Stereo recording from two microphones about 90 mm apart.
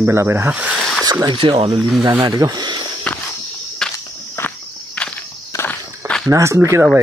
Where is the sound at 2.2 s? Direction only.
50° right (ahead or behind).